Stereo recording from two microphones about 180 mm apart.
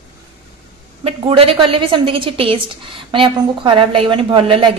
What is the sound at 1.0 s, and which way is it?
A woman's voice, 30° right (ahead or behind).